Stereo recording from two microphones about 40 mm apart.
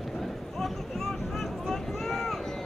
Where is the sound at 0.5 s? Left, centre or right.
Centre.